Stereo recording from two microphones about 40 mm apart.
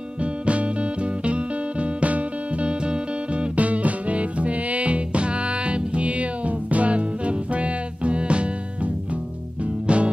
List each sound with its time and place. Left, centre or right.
0.2 s music: right
2.8 s music: right
3.5 s music: right